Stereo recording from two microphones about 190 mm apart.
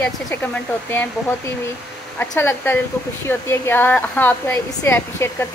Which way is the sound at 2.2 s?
10° left (ahead or behind).